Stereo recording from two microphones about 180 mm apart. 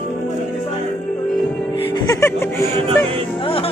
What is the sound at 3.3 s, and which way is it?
Music, 30° left (ahead or behind).